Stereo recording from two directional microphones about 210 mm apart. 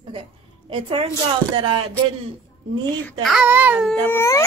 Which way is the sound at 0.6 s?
25° right (ahead or behind).